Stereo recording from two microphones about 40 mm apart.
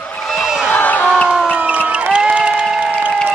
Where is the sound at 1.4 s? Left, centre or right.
Right.